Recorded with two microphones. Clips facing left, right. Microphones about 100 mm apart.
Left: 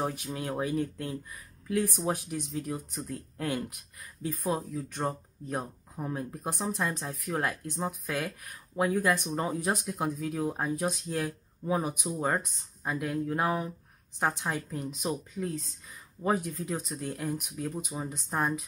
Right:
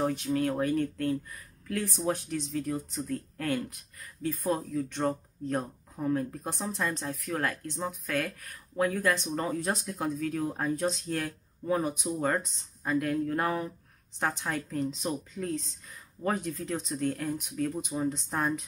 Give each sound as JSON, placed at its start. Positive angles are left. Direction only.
{"t": 0.0, "sound": "speech", "side_deg": 10}